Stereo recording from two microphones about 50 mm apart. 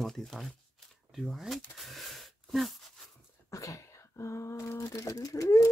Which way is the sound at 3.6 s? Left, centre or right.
Left.